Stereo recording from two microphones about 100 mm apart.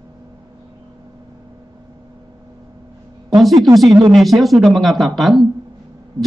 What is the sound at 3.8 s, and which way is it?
Speech, 45° right (ahead or behind).